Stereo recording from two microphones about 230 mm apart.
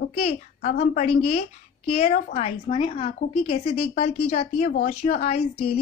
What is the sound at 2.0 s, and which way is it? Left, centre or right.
A woman's voice, left.